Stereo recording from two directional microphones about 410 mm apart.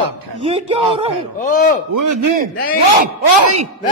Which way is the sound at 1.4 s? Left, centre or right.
Centre.